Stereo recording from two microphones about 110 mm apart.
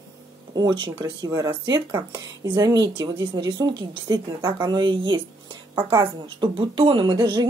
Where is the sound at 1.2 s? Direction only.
30° right (ahead or behind).